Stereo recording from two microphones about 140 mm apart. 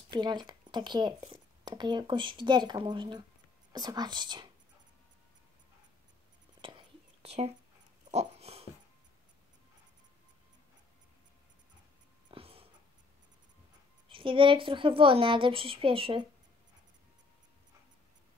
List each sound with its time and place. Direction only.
0.1 s speech: 30° right (ahead or behind)
6.6 s whispering: 35° right (ahead or behind)
7.2 s speech: 50° right (ahead or behind)
8.1 s dog: 50° right (ahead or behind)
12.3 s a sound: 45° right (ahead or behind)
14.0 s speech: 40° right (ahead or behind)